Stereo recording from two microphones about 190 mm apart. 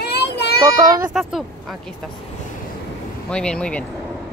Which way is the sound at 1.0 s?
Centre (ahead or behind).